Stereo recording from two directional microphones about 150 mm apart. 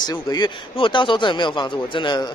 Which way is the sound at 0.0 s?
25° left (ahead or behind).